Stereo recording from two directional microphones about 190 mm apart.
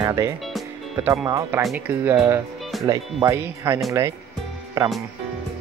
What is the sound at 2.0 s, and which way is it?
Speech, 15° right (ahead or behind).